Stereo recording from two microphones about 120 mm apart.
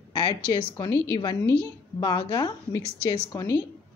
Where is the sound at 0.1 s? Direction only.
40° left (ahead or behind).